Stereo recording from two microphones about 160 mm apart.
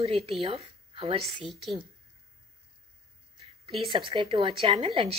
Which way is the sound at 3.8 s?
30° right (ahead or behind).